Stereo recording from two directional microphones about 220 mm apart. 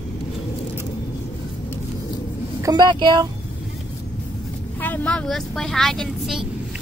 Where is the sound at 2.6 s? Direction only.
20° right (ahead or behind).